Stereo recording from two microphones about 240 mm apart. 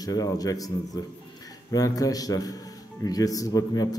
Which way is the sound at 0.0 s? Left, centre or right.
Centre.